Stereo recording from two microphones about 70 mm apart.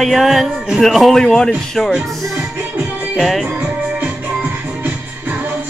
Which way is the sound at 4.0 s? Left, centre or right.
Centre.